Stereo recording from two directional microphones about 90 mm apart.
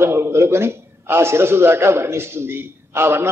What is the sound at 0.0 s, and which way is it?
A man's voice, 30° right (ahead or behind).